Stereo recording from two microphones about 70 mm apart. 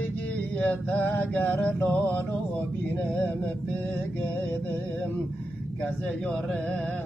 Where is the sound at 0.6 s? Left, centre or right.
Left.